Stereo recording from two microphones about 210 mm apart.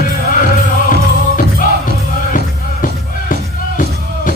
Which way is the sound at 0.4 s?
40° left (ahead or behind).